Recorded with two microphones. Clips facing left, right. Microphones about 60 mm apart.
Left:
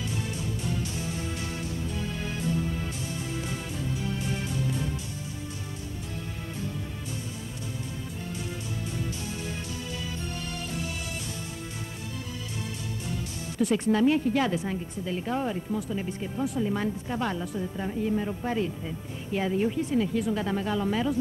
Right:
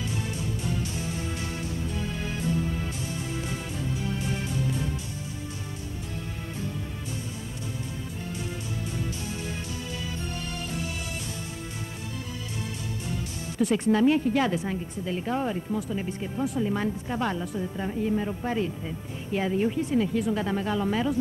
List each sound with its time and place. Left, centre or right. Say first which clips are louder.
0.4 s music: right 1 dB; centre
13.1 s speech: right 1 dB; centre